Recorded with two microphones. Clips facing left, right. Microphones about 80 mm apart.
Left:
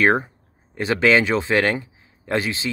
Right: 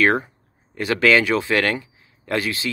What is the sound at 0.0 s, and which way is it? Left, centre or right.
Speech, left.